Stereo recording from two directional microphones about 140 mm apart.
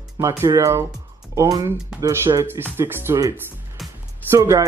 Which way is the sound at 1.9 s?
5° right (ahead or behind).